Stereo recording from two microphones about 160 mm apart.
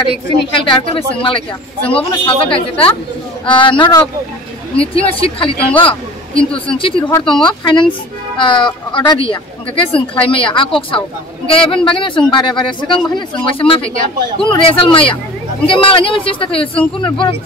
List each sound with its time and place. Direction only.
0.7 s a woman's voice: 35° left (ahead or behind)